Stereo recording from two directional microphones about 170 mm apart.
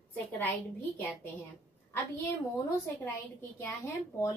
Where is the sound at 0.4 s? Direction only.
10° left (ahead or behind).